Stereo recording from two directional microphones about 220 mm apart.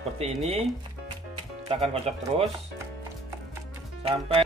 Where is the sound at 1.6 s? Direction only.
25° right (ahead or behind).